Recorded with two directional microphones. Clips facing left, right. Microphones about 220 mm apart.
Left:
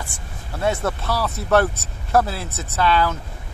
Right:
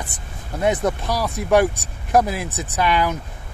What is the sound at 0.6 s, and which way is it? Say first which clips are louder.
Speech: right 3 dB; 15° right (ahead or behind).